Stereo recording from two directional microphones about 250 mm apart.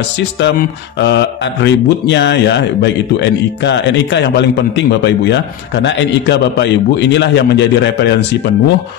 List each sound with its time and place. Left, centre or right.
0.2 s speech: left